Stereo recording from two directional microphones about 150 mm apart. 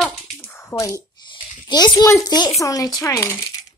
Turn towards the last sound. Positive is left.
turn(degrees=20)  # may be behind; listen again after turning